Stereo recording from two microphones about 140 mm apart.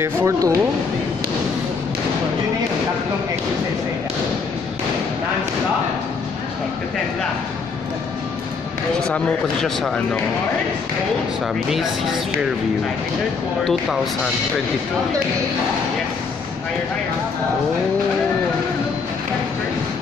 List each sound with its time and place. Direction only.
0.0 s speech: 20° right (ahead or behind)
9.1 s a man's voice: 5° left (ahead or behind)
11.7 s a man's voice: centre (ahead or behind)
13.7 s a man's voice: centre (ahead or behind)